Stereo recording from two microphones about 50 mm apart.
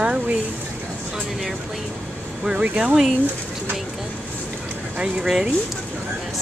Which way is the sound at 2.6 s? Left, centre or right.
Right.